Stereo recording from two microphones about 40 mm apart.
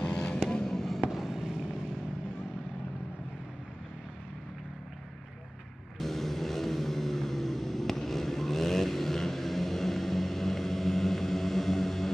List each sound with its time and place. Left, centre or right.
0.0 s vehicle: left
0.5 s fireworks: centre
1.1 s vehicle: centre
5.9 s vehicle: centre